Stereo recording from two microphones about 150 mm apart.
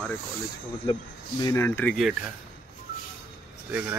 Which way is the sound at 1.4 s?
15° left (ahead or behind).